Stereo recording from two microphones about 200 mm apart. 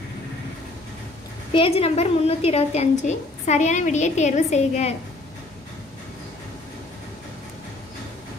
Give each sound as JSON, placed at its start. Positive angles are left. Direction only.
{"t": 1.5, "sound": "a woman's voice", "side_deg": 30}